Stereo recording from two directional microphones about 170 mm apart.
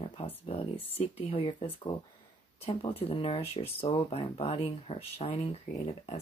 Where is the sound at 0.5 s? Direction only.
35° left (ahead or behind).